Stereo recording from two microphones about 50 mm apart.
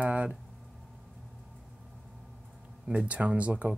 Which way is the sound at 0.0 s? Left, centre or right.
Right.